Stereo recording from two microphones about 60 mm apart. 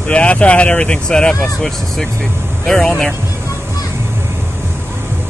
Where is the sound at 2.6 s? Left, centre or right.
Centre.